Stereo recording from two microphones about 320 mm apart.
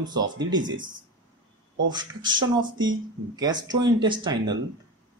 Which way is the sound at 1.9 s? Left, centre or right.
Centre.